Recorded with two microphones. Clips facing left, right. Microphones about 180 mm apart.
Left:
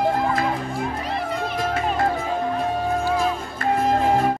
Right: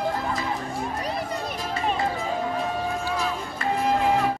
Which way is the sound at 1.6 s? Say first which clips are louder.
Left 4 dB; 55° left (ahead or behind).